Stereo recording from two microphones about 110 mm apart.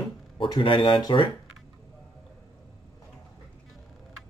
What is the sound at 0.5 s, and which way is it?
Speech, 50° left (ahead or behind).